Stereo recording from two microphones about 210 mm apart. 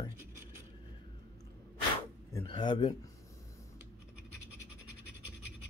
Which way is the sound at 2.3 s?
20° left (ahead or behind).